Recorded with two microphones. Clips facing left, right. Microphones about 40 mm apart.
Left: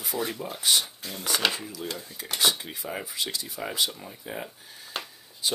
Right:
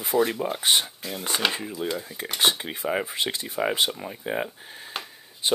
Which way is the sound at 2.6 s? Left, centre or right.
Right.